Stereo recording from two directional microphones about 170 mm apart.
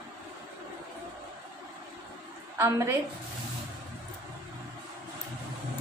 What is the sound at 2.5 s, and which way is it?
Speech, 15° right (ahead or behind).